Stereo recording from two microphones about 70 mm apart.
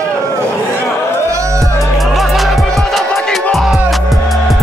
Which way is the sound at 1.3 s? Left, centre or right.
Right.